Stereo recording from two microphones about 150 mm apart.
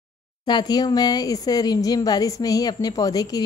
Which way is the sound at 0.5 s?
30° left (ahead or behind).